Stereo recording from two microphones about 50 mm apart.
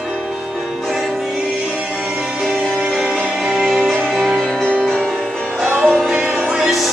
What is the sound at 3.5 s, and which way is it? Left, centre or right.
Music, centre.